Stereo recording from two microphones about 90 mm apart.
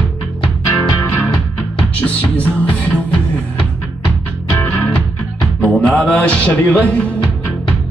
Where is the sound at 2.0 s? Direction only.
15° left (ahead or behind).